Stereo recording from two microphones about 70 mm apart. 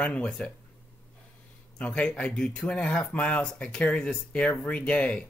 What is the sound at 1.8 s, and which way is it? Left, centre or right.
Speech, centre.